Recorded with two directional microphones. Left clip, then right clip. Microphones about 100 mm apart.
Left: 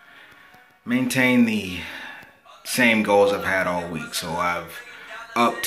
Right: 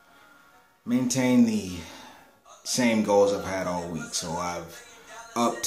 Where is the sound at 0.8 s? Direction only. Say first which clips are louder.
Left 5 dB; 25° right (ahead or behind).